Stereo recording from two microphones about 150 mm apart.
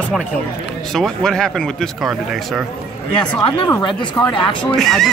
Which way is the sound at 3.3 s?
35° left (ahead or behind).